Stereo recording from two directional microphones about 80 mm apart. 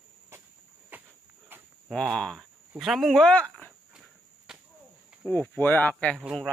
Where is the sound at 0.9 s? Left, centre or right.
Right.